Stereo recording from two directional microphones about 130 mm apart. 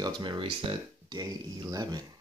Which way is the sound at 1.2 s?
30° right (ahead or behind).